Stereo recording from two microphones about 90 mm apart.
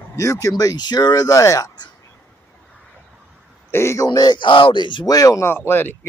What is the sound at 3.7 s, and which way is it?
Speech, 30° left (ahead or behind).